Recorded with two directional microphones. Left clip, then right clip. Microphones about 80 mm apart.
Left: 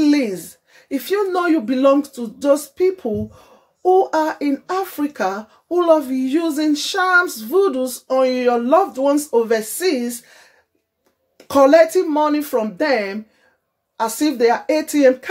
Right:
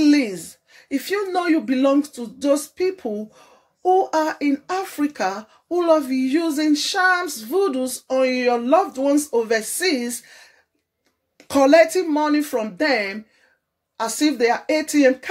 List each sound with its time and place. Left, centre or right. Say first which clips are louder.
0.0 s speech: left 1 dB; left